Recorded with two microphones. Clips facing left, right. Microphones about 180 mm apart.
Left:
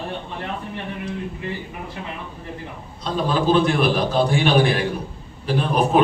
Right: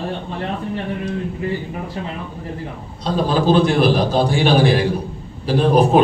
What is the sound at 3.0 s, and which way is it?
A man's voice, 35° right (ahead or behind).